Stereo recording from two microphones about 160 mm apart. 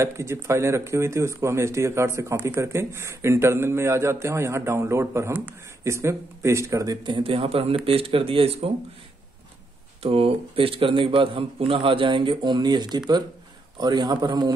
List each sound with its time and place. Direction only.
0.0 s speech: 15° right (ahead or behind); by 8.7 s 40° right (ahead or behind)
10.0 s a man's voice: 35° right (ahead or behind)